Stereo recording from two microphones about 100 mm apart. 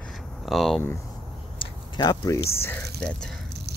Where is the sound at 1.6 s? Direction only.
45° left (ahead or behind).